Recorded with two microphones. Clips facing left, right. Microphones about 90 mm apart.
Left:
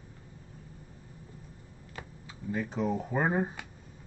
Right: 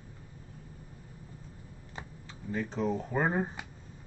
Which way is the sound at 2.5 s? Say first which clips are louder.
Even; 5° left (ahead or behind).